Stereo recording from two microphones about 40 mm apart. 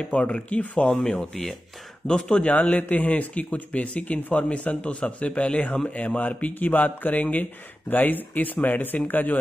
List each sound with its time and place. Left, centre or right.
0.1 s speech: left
1.3 s speech: centre
2.0 s speech: left
2.4 s speech: left